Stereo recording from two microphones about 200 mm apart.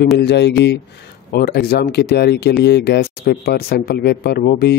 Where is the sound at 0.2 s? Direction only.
60° left (ahead or behind).